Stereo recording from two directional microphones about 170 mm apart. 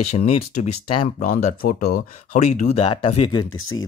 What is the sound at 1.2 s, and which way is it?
Speech, 50° left (ahead or behind).